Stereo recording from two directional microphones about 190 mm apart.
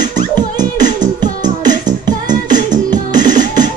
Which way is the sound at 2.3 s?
40° right (ahead or behind).